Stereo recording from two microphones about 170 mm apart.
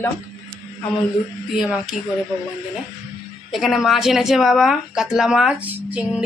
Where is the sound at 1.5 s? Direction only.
Centre (ahead or behind).